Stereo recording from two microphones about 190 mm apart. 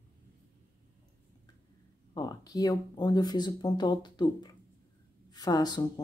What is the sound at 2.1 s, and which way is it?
Speech, 20° left (ahead or behind).